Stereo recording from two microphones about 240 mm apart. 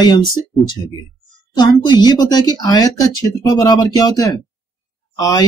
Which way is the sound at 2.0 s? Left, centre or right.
Centre.